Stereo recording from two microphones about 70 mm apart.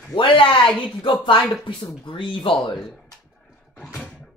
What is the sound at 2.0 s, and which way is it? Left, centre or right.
Speech, left.